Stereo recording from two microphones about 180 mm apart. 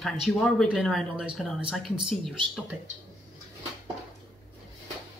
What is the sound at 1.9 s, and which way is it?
Speech, 25° right (ahead or behind).